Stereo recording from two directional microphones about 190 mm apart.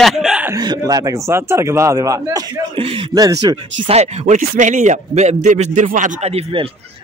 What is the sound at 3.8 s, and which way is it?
A man's voice, 35° right (ahead or behind).